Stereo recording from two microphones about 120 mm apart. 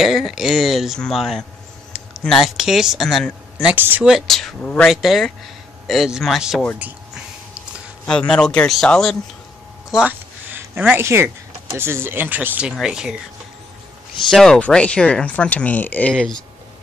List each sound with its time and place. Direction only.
0.0 s a man's voice: centre (ahead or behind)
3.6 s speech: 15° right (ahead or behind)
4.0 s speech: centre (ahead or behind)
4.9 s speech: centre (ahead or behind)
8.1 s speech: 5° left (ahead or behind)
9.8 s a sound: 10° right (ahead or behind)
11.7 s speech: 20° right (ahead or behind); by 13.1 s 5° right (ahead or behind)
14.3 s speech: 5° left (ahead or behind)